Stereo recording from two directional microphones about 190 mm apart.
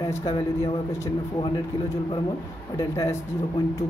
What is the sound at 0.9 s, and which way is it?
Speech, 20° left (ahead or behind).